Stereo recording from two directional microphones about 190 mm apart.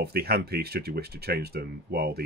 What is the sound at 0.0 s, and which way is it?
Speech, 55° right (ahead or behind).